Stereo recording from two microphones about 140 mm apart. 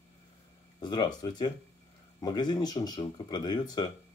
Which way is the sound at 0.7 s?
30° left (ahead or behind).